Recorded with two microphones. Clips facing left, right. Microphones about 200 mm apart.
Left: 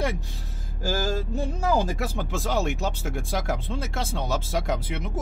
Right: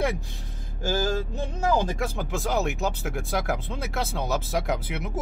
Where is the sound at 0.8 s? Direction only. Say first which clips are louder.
Right 1 dB; 10° left (ahead or behind).